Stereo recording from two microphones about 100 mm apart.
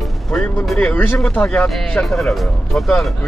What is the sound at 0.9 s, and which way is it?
Speech, 20° left (ahead or behind).